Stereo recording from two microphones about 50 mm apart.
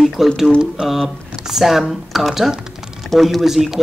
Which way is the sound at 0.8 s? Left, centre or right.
Centre.